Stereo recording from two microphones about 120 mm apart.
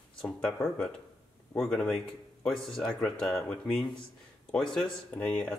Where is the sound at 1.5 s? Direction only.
5° left (ahead or behind).